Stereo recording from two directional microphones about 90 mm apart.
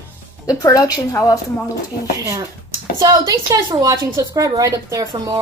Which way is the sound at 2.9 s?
45° right (ahead or behind).